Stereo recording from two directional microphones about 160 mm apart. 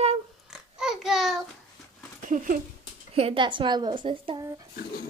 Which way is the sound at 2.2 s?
55° right (ahead or behind).